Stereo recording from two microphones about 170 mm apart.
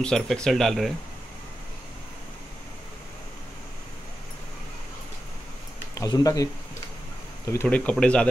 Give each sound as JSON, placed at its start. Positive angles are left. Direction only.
{"t": 0.0, "sound": "speech", "side_deg": 5}
{"t": 5.9, "sound": "speech", "side_deg": 20}
{"t": 7.6, "sound": "speech", "side_deg": 5}